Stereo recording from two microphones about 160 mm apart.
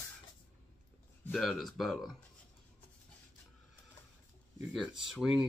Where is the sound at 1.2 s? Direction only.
Centre (ahead or behind).